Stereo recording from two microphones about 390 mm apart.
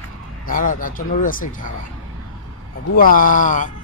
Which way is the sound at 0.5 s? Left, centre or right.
Left.